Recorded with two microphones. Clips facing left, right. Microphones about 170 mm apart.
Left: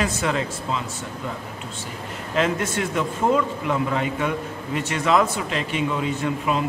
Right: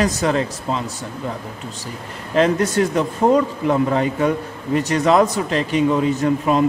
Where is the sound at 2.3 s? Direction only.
35° right (ahead or behind).